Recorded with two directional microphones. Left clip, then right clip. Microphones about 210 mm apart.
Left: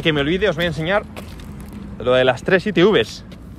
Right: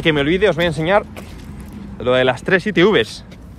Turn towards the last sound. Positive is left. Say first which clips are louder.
# right 1 dB
turn(degrees=15)  # may be behind; listen again after turning